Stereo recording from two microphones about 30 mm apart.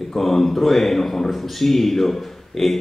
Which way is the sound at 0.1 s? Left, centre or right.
Centre.